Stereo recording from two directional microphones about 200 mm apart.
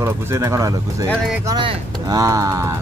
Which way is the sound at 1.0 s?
Centre (ahead or behind).